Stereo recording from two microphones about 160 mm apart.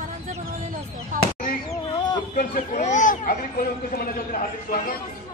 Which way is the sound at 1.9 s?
25° left (ahead or behind).